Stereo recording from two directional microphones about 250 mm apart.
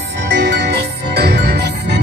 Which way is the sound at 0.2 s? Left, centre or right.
Right.